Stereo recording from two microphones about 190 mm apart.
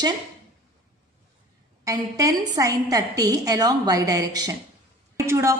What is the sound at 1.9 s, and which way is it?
A woman's voice, 15° right (ahead or behind).